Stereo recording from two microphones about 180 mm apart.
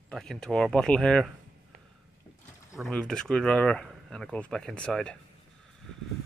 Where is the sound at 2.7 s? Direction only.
5° left (ahead or behind).